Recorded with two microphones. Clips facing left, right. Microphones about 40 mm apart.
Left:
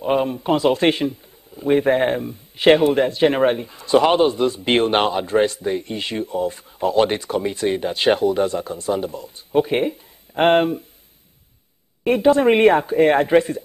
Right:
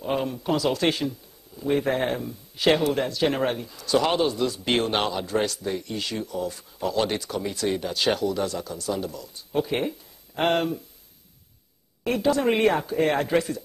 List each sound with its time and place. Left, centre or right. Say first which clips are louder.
0.0 s speech: left 7 dB; left
12.0 s speech: left 8 dB; left